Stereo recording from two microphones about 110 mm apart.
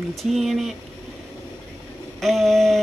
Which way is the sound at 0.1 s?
Centre (ahead or behind).